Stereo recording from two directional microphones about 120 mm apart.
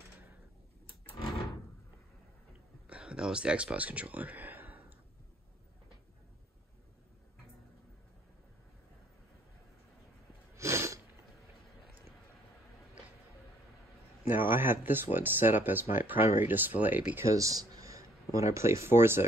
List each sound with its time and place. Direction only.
2.9 s speech: 10° right (ahead or behind)
10.5 s sneeze: 25° right (ahead or behind)
14.2 s speech: 15° right (ahead or behind)
17.3 s a sound: 30° right (ahead or behind)
18.5 s speech: 25° right (ahead or behind)